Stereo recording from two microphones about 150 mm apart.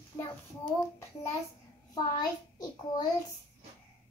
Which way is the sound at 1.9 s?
25° left (ahead or behind).